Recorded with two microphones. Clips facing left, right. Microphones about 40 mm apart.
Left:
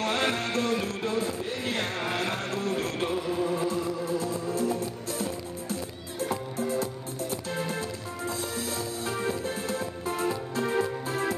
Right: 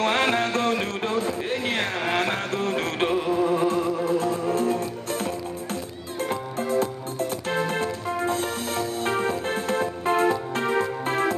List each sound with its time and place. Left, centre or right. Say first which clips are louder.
0.0 s music: right 6 dB; right